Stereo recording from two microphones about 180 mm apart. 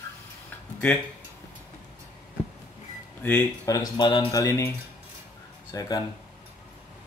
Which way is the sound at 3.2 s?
15° left (ahead or behind).